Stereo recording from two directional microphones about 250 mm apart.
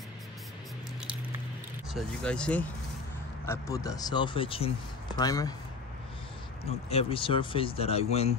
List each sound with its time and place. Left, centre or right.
2.0 s speech: centre
6.6 s speech: left